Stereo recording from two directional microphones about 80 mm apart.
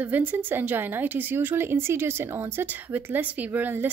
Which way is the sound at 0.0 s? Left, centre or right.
Right.